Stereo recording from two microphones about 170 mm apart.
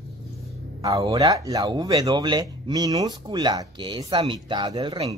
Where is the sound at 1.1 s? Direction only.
20° right (ahead or behind).